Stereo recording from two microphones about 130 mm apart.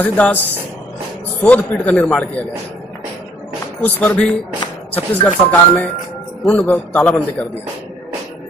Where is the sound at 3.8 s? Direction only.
10° left (ahead or behind).